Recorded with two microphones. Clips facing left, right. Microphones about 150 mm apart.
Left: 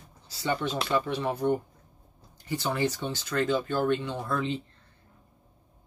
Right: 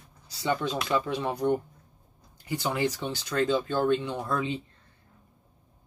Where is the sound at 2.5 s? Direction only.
15° right (ahead or behind).